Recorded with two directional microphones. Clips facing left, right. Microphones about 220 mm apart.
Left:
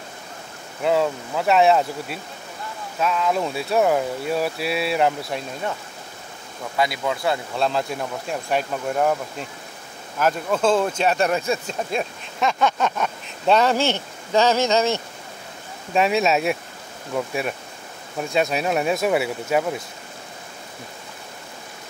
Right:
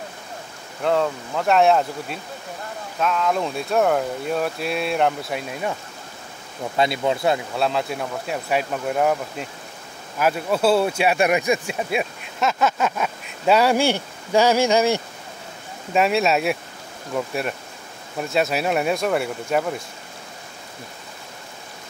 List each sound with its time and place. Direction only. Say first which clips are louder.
0.8 s speech: left 1 dB; 5° left (ahead or behind)
6.8 s speech: right 3 dB; 25° right (ahead or behind)
7.5 s speech: even; 5° right (ahead or behind)
15.9 s speech: even; centre (ahead or behind)